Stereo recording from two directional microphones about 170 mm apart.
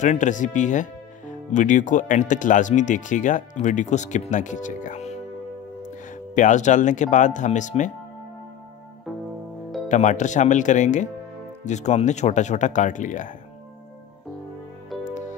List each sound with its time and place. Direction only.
0.0 s speech: 45° left (ahead or behind)
9.8 s speech: 45° left (ahead or behind)